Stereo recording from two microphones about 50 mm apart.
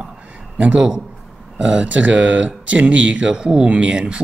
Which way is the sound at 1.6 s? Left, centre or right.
Right.